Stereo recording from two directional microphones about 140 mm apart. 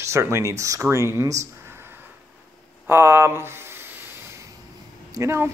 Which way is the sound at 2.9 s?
20° right (ahead or behind).